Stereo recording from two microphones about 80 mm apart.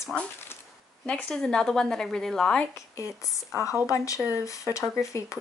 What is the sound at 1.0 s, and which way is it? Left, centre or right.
A woman's voice, centre.